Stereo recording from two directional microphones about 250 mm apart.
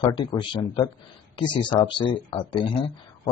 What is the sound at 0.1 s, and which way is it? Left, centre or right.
Speech, centre.